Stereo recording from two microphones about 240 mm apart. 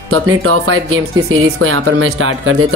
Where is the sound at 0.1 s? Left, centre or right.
Right.